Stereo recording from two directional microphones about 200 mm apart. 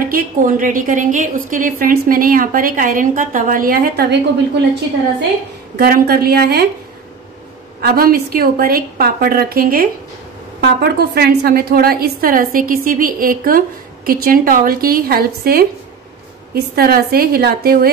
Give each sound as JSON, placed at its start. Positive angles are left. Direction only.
{"t": 0.0, "sound": "a woman's voice", "side_deg": -45}
{"t": 5.8, "sound": "a woman's voice", "side_deg": -50}
{"t": 7.8, "sound": "a woman's voice", "side_deg": -50}